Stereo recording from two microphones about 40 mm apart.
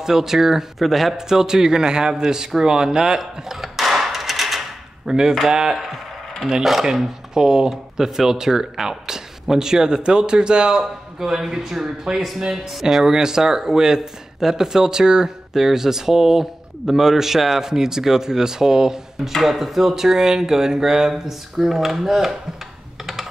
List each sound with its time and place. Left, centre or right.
0.0 s speech: centre
3.2 s a sound: centre
5.5 s speech: centre
6.6 s speech: centre
6.9 s speech: centre
11.1 s speech: centre